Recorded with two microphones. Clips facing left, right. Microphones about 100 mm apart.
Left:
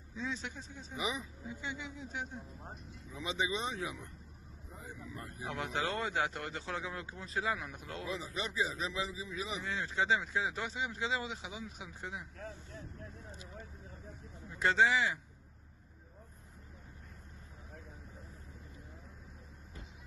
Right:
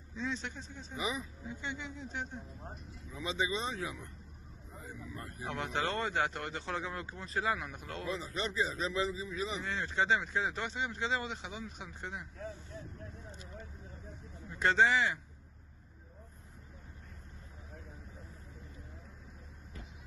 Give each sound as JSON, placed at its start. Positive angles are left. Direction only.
{"t": 0.1, "sound": "speech", "side_deg": 5}
{"t": 1.4, "sound": "a man's voice", "side_deg": 5}
{"t": 3.2, "sound": "speech", "side_deg": 20}
{"t": 5.4, "sound": "a man's voice", "side_deg": 5}